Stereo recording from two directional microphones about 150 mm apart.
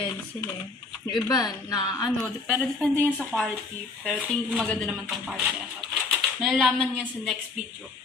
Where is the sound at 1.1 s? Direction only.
25° left (ahead or behind).